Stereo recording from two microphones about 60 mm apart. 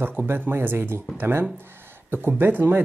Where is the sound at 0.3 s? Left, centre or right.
Right.